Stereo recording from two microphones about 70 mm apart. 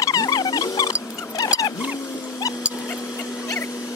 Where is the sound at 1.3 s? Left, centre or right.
Left.